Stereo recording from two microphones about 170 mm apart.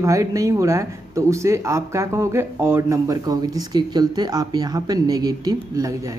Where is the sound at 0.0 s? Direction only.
20° right (ahead or behind).